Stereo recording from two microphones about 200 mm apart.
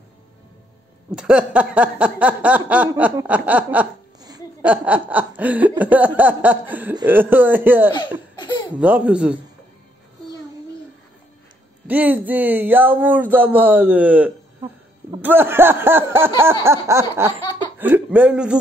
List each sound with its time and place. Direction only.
1.1 s speech: 5° right (ahead or behind)
4.2 s a sound: 20° right (ahead or behind)
4.6 s speech: 10° right (ahead or behind)
8.4 s baby laughter: 20° left (ahead or behind)
8.7 s speech: 5° right (ahead or behind)
11.9 s speech: 10° right (ahead or behind)